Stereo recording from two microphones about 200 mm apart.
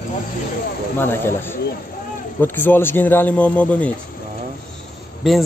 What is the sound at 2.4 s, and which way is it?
Speech, 10° left (ahead or behind).